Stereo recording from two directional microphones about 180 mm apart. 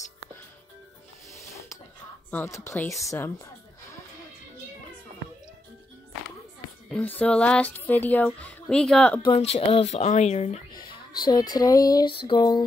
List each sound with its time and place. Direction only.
2.3 s speech: 15° left (ahead or behind)
6.9 s speech: 10° left (ahead or behind)
9.3 s speech: 30° left (ahead or behind)
10.7 s a sound: 25° left (ahead or behind)